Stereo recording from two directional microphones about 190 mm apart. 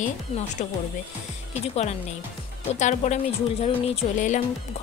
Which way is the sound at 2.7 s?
40° left (ahead or behind).